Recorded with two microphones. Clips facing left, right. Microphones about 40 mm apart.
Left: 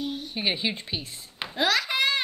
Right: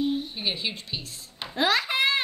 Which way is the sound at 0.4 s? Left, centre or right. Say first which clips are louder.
Left 3 dB; left.